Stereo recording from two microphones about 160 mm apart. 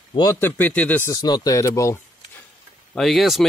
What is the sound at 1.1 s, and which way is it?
Speech, 25° left (ahead or behind).